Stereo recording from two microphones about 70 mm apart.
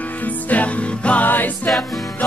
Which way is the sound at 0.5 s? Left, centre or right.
Left.